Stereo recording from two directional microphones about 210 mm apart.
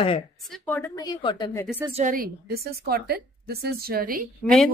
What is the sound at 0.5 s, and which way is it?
A woman's voice, 10° left (ahead or behind).